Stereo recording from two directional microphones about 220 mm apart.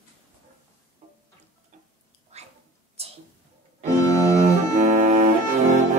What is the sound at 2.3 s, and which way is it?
Cat, 30° right (ahead or behind).